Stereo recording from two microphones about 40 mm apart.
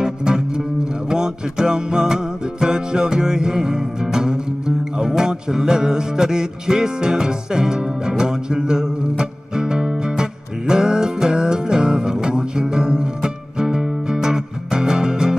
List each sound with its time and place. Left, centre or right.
0.0 s music: centre